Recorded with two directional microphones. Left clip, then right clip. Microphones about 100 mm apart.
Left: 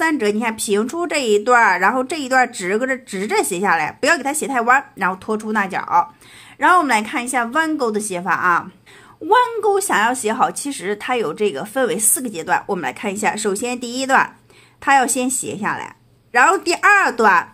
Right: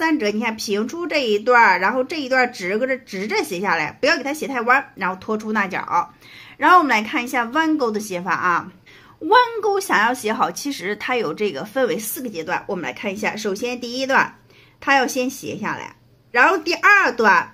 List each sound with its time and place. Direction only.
0.0 s speech: 35° left (ahead or behind)
4.0 s speech: 45° left (ahead or behind)
5.3 s a woman's voice: 25° left (ahead or behind)
12.0 s a woman's voice: 40° left (ahead or behind)